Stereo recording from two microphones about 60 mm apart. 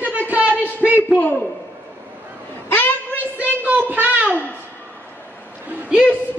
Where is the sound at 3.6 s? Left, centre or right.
Right.